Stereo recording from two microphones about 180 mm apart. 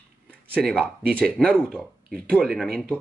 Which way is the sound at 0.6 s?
Centre (ahead or behind).